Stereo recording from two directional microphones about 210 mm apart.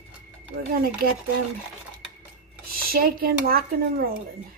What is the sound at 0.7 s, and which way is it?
Speech, 45° right (ahead or behind).